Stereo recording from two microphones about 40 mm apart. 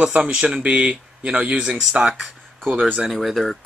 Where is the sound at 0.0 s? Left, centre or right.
Right.